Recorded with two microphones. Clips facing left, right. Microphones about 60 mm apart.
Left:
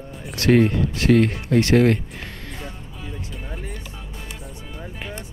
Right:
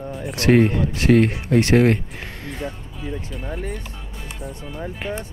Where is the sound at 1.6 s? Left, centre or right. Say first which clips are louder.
Even; right.